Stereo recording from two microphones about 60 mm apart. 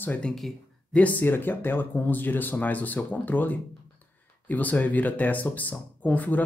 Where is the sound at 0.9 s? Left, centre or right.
Left.